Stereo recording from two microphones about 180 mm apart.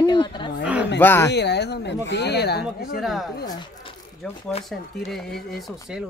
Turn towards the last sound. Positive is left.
turn(degrees=0)  # may be behind; listen again after turning